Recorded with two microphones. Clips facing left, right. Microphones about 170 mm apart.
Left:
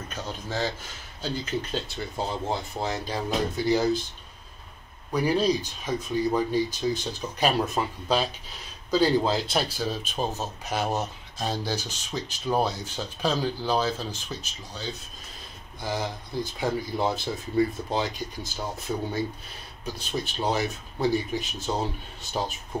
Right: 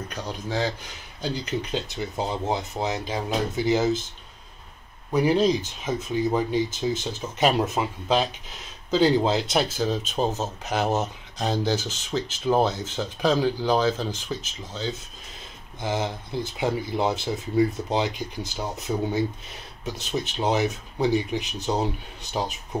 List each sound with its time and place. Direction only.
0.1 s speech: 15° right (ahead or behind)
5.1 s speech: 20° right (ahead or behind)
8.9 s speech: 20° right (ahead or behind)
11.8 s speech: 15° left (ahead or behind)
12.3 s speech: 20° right (ahead or behind)